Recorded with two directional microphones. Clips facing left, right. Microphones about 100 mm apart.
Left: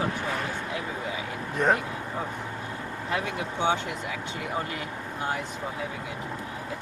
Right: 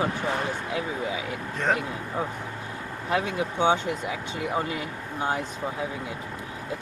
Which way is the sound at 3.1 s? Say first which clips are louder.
Right 4 dB; 20° right (ahead or behind).